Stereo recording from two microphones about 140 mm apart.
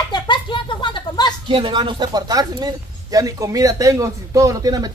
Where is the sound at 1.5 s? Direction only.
35° right (ahead or behind).